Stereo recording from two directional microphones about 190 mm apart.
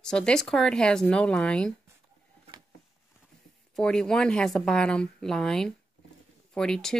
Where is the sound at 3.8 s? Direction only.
5° left (ahead or behind).